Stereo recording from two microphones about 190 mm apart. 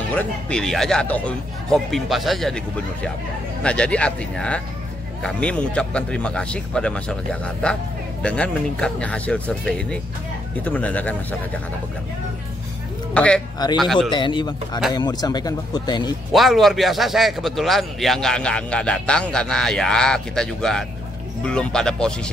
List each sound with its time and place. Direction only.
0.1 s a man's voice: 5° left (ahead or behind)
13.1 s a man's voice: 5° left (ahead or behind)
14.1 s speech: 25° left (ahead or behind)
16.3 s a man's voice: centre (ahead or behind)